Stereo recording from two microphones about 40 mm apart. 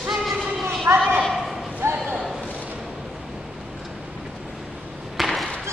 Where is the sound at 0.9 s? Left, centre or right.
Right.